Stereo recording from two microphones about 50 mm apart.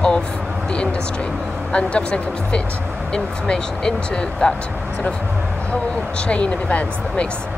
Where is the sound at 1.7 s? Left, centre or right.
Left.